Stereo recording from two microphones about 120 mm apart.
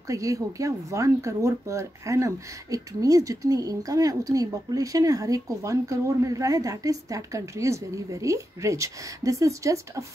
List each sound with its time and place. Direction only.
0.1 s speech: 25° right (ahead or behind)